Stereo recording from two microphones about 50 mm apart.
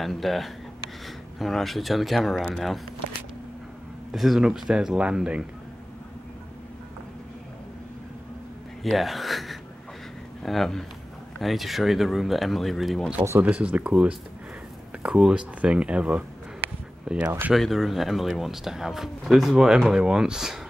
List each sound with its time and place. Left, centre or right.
0.0 s speech: centre
4.1 s speech: centre
8.8 s gasp: centre
10.4 s speech: centre
13.4 s speech: right
15.0 s speech: centre
17.6 s speech: centre